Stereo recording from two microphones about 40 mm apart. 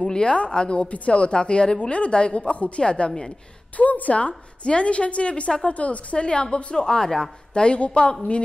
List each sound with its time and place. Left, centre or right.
0.0 s a woman's voice: left
3.7 s a woman's voice: left